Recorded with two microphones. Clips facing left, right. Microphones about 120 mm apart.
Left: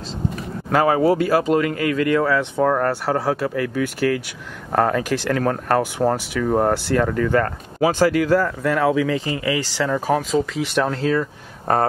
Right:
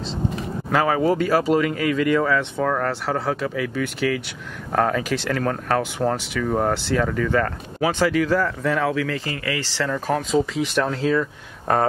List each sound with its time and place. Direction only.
1.0 s speech: 5° left (ahead or behind)
10.1 s speech: centre (ahead or behind)